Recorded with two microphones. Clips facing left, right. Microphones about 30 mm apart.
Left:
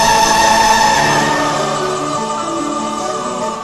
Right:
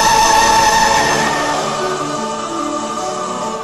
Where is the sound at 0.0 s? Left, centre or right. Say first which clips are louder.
Even; centre.